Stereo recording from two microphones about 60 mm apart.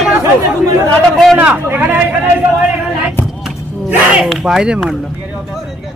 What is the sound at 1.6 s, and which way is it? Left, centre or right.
Speech, right.